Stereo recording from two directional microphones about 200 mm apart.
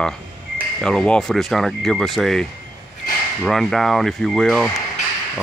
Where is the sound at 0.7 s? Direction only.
5° left (ahead or behind).